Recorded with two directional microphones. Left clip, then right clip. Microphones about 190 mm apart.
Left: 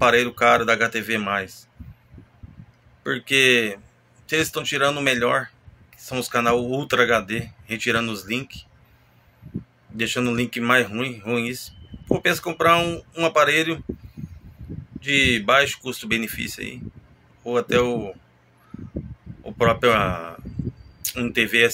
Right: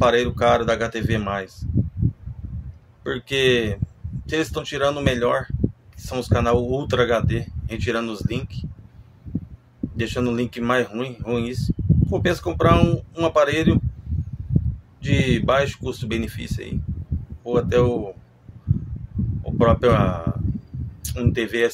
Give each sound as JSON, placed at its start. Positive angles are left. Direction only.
{"t": 0.0, "sound": "speech", "side_deg": -10}
{"t": 3.0, "sound": "speech", "side_deg": -10}
{"t": 9.9, "sound": "speech", "side_deg": -10}
{"t": 15.0, "sound": "speech", "side_deg": -15}
{"t": 19.6, "sound": "speech", "side_deg": -10}